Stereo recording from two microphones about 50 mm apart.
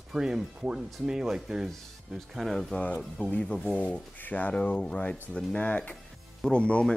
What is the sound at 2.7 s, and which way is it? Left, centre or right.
Speech, left.